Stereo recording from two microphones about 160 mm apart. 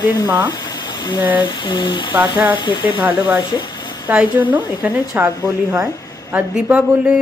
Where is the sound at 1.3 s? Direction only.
30° left (ahead or behind).